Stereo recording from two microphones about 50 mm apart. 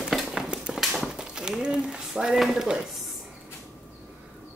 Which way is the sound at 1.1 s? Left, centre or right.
Centre.